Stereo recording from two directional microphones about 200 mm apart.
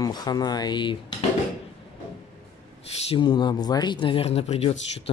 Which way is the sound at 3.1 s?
25° left (ahead or behind).